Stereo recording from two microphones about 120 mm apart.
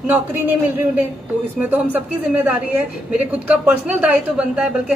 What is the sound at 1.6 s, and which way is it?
A woman's voice, 15° right (ahead or behind).